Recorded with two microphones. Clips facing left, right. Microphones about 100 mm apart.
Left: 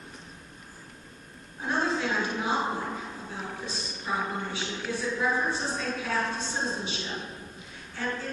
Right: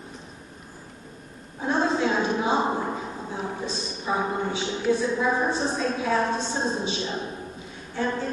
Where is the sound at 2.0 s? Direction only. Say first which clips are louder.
Right 5 dB; 20° right (ahead or behind).